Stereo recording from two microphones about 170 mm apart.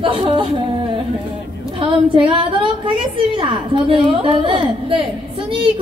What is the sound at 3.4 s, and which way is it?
A woman's voice, 30° right (ahead or behind).